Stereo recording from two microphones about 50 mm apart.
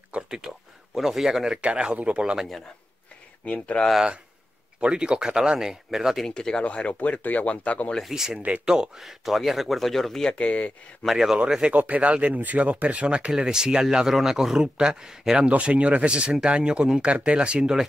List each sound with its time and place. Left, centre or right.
0.1 s speech: right
0.9 s speech: centre
1.6 s speech: right
3.4 s speech: left
4.7 s speech: centre
6.2 s speech: centre
6.6 s speech: left
8.1 s speech: centre
8.4 s speech: right
8.6 s speech: centre
10.2 s speech: left
11.1 s speech: centre
11.7 s speech: right; by 15.4 s centre
15.4 s speech: right